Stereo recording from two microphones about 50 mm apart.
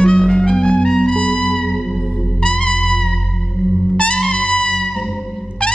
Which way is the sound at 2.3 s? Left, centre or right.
Centre.